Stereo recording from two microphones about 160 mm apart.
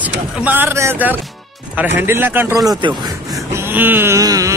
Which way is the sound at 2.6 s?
25° right (ahead or behind).